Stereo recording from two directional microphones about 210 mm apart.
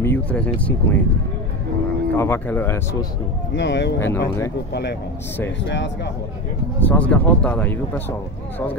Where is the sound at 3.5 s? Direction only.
55° left (ahead or behind).